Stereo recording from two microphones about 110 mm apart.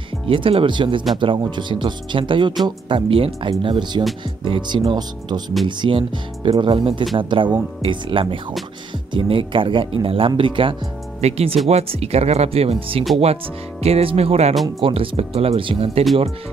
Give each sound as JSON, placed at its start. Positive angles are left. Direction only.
{"t": 0.3, "sound": "speech", "side_deg": -55}
{"t": 11.1, "sound": "speech", "side_deg": -70}
{"t": 14.8, "sound": "speech", "side_deg": -55}